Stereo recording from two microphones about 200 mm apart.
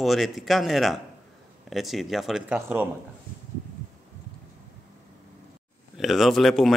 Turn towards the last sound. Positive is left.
turn(degrees=0)  # may be behind; listen again after turning